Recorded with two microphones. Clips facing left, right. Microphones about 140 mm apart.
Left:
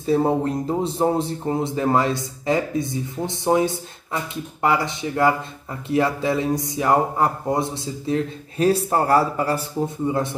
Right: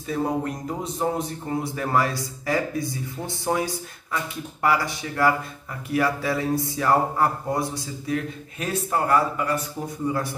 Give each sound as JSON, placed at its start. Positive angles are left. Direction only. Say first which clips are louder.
{"t": 0.0, "sound": "speech", "louder": "left 6 dB", "side_deg": 30}